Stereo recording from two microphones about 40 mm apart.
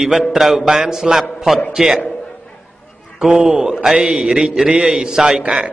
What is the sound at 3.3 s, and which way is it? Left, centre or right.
A man's voice, centre.